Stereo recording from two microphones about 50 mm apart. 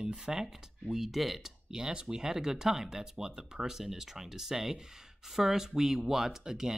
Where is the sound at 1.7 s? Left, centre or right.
Centre.